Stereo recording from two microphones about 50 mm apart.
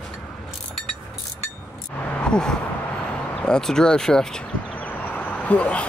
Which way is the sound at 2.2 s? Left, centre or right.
Centre.